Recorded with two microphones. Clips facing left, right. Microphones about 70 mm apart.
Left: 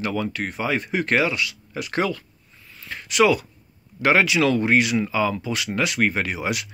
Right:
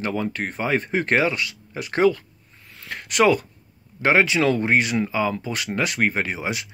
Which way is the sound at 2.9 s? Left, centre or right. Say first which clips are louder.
Even; right.